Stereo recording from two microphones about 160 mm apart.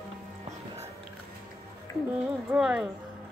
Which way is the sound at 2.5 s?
5° right (ahead or behind).